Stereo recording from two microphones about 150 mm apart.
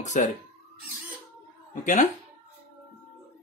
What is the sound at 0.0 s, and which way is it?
Speech, 50° left (ahead or behind).